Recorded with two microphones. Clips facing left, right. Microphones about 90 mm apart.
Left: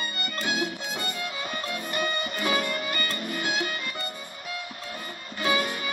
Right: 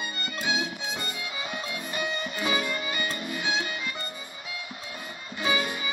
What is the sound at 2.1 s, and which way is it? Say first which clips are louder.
Music: left 2 dB; 55° left (ahead or behind).